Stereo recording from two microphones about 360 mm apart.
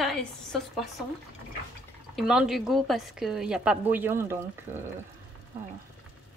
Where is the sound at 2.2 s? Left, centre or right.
Centre.